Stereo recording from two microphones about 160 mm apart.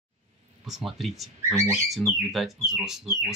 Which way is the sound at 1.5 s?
15° right (ahead or behind).